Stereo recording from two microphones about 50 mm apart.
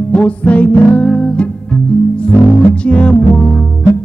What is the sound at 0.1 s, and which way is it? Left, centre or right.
Music, left.